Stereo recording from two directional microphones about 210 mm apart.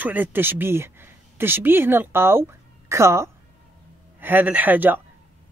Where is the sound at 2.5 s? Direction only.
15° right (ahead or behind).